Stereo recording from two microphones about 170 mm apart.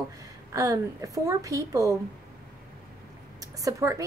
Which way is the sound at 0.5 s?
20° right (ahead or behind).